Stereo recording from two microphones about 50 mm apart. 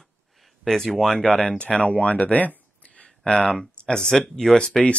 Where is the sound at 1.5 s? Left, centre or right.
Left.